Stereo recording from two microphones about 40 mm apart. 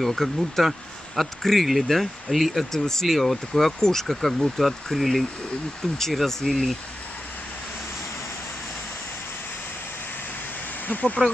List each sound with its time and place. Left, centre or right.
0.0 s speech: centre
2.7 s speech: centre
4.9 s speech: centre
10.9 s speech: left